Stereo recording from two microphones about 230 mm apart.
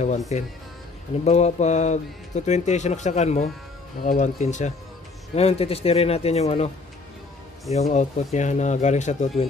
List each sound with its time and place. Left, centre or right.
0.3 s speech: left
7.7 s speech: left